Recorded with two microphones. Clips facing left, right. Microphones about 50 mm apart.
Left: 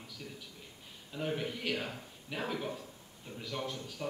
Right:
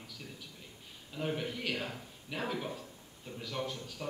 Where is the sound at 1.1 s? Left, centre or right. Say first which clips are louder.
Even; centre.